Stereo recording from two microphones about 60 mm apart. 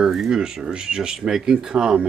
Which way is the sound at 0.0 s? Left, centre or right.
Centre.